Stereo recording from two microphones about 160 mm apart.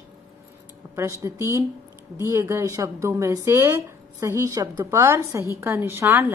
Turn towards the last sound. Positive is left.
turn(degrees=-15)  # may be behind; listen again after turning